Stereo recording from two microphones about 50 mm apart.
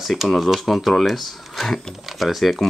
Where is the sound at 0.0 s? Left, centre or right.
Centre.